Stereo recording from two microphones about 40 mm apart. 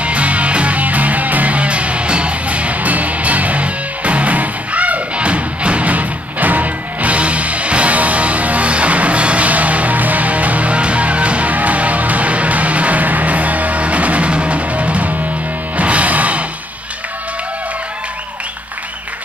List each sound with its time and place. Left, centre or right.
0.0 s music: right